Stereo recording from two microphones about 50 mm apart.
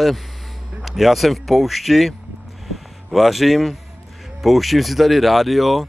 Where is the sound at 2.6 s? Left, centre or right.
Centre.